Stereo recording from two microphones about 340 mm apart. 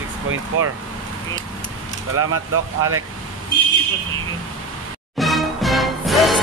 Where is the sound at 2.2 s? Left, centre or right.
Right.